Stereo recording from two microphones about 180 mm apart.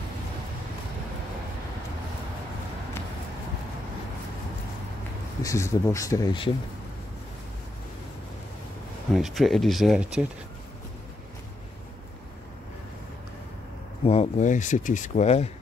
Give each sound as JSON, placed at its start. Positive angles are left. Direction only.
{"t": 5.4, "sound": "speech", "side_deg": 15}
{"t": 9.1, "sound": "speech", "side_deg": 0}
{"t": 14.0, "sound": "speech", "side_deg": 35}